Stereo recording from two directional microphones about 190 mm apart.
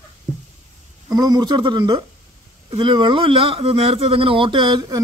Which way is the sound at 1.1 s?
20° right (ahead or behind).